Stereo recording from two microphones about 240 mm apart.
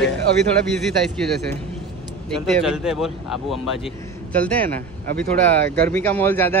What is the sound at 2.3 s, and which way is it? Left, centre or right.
Speech, centre.